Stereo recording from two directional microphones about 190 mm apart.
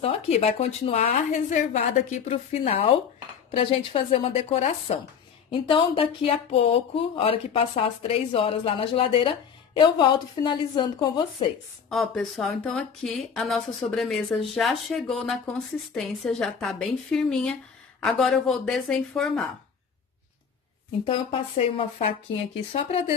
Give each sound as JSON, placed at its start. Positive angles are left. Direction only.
{"t": 0.0, "sound": "a woman's voice", "side_deg": 35}
{"t": 11.9, "sound": "speech", "side_deg": 0}
{"t": 21.0, "sound": "a woman's voice", "side_deg": 30}